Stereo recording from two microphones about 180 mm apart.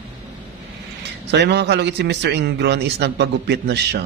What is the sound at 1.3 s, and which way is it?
A man's voice, 70° right (ahead or behind).